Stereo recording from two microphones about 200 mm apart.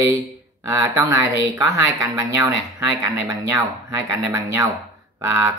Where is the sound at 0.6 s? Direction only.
15° right (ahead or behind).